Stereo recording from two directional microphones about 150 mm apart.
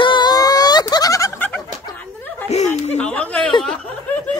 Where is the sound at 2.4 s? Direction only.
50° left (ahead or behind).